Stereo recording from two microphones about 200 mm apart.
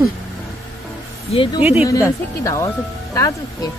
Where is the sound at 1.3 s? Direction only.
25° left (ahead or behind).